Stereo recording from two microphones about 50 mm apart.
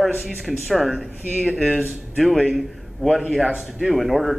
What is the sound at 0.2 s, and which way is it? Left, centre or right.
A man's voice, centre.